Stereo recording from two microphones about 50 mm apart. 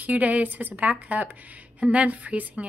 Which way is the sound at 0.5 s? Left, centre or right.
Right.